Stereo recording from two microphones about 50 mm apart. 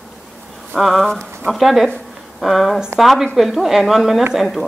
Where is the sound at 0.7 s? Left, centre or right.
Centre.